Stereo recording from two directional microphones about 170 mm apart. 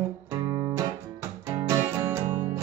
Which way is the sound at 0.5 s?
20° right (ahead or behind).